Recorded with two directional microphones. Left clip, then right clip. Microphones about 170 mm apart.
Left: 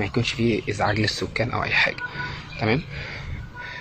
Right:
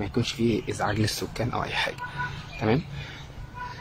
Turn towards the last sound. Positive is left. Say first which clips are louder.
# left 2 dB
turn(degrees=0)  # may be behind; listen again after turning